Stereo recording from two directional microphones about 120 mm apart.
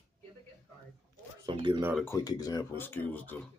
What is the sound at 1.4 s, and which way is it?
Speech, 40° right (ahead or behind).